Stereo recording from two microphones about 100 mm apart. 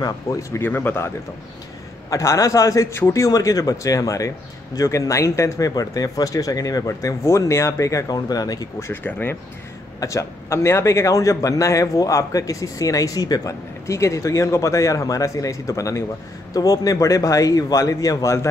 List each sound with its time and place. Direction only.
0.0 s speech: 35° left (ahead or behind)
2.0 s a man's voice: 35° left (ahead or behind)